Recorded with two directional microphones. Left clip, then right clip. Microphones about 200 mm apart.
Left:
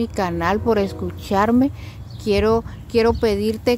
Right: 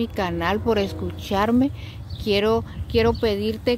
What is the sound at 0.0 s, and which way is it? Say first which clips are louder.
Speech: left 3 dB; 10° left (ahead or behind).